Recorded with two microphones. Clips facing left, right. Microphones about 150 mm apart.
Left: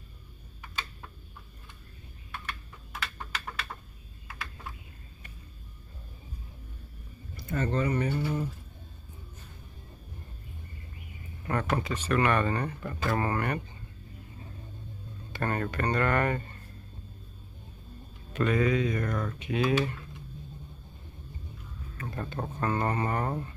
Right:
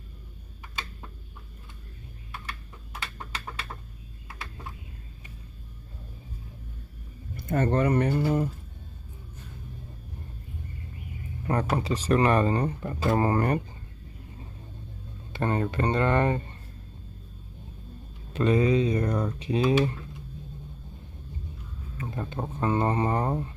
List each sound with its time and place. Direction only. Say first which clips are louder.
7.3 s speech: right 5 dB; 50° right (ahead or behind)
11.4 s speech: right 3 dB; 30° right (ahead or behind)
15.3 s speech: right 4 dB; 20° right (ahead or behind)
18.3 s speech: right 4 dB; 30° right (ahead or behind)
21.9 s speech: right 2 dB; 10° right (ahead or behind)